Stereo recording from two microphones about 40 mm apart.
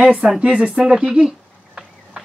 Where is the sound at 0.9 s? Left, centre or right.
Right.